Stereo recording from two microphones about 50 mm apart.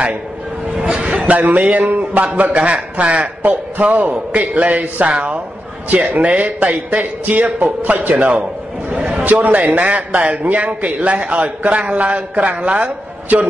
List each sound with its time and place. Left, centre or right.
0.7 s a man's voice: centre